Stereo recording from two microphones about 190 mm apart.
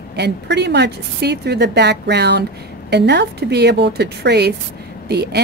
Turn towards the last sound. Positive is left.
turn(degrees=-60)  # may be behind; listen again after turning